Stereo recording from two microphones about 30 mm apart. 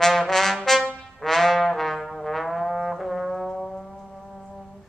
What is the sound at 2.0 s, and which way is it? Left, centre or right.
Brass instrument, centre.